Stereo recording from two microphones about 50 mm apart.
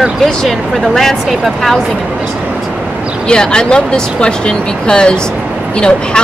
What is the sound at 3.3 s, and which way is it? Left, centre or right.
Speech, centre.